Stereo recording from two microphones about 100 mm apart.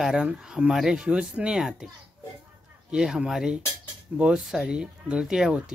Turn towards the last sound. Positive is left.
turn(degrees=-5)  # may be behind; listen again after turning